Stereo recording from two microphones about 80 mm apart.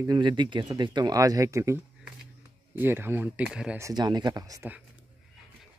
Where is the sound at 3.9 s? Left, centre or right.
Right.